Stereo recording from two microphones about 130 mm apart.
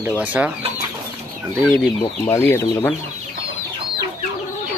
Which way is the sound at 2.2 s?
20° left (ahead or behind).